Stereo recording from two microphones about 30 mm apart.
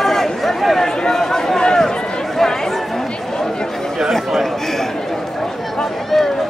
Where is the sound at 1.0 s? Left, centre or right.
Centre.